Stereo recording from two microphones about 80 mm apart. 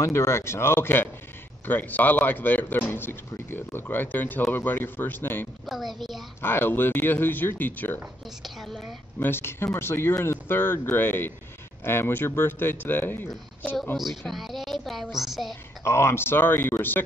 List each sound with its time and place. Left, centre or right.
0.0 s speech: left
5.7 s a woman's voice: centre
6.4 s speech: left
8.5 s a woman's voice: centre
9.2 s speech: left
13.9 s a woman's voice: centre
15.8 s speech: left